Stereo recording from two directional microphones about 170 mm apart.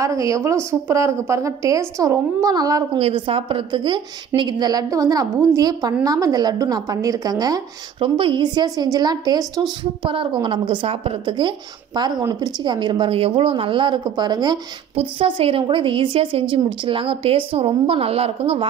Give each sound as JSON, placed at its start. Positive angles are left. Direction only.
{"t": 0.0, "sound": "a woman's voice", "side_deg": -20}